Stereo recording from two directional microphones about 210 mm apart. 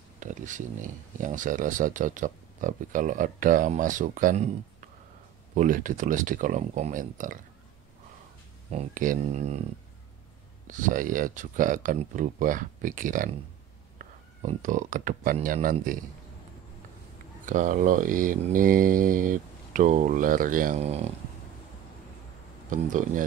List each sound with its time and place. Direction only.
0.2 s speech: 35° right (ahead or behind)
8.7 s speech: 40° right (ahead or behind)
10.7 s speech: 40° right (ahead or behind)
17.5 s speech: 35° right (ahead or behind)
22.7 s speech: 40° right (ahead or behind)